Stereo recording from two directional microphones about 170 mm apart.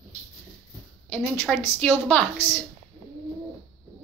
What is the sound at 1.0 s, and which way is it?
A woman's voice, 5° left (ahead or behind).